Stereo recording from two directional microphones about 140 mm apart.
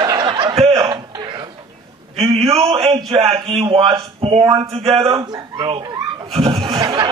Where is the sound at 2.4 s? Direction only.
25° right (ahead or behind).